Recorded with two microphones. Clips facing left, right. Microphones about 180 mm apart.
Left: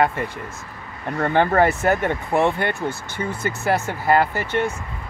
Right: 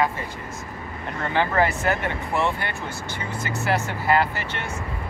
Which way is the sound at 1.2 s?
50° left (ahead or behind).